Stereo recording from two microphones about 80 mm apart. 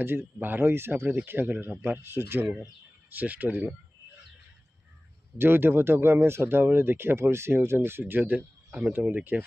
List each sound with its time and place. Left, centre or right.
0.0 s speech: right
5.4 s speech: right